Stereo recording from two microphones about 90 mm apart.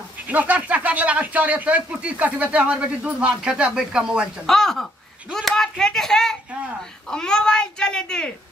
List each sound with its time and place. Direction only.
0.3 s speech: 15° right (ahead or behind)
4.5 s a child's voice: 5° left (ahead or behind)